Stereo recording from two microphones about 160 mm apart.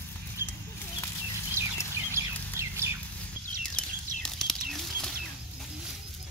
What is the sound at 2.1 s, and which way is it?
Bird, 15° right (ahead or behind).